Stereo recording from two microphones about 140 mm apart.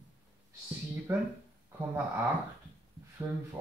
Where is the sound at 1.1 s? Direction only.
15° right (ahead or behind).